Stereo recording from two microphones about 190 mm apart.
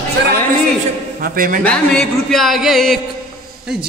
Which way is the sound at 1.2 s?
45° right (ahead or behind).